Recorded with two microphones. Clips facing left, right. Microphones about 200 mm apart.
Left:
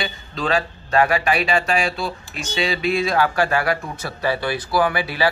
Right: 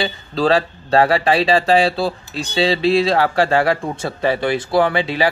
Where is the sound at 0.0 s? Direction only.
35° right (ahead or behind).